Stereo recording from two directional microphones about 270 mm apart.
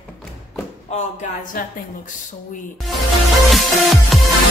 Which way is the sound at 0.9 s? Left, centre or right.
Left.